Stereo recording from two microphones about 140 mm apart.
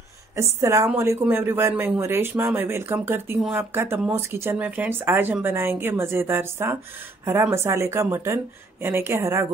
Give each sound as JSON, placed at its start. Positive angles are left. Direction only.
{"t": 0.4, "sound": "a woman's voice", "side_deg": -20}